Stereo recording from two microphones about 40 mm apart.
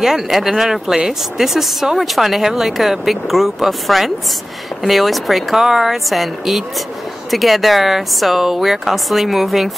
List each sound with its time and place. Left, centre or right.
0.0 s speech: centre